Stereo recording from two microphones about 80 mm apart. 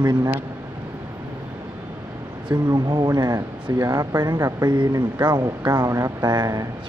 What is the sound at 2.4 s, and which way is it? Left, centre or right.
Speech, right.